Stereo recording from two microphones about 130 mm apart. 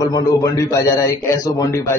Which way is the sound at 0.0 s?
25° left (ahead or behind).